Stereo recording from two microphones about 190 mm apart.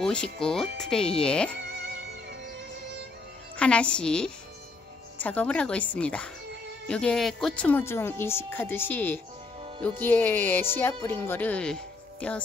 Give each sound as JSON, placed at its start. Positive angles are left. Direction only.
{"t": 0.0, "sound": "speech", "side_deg": 5}
{"t": 3.5, "sound": "speech", "side_deg": 5}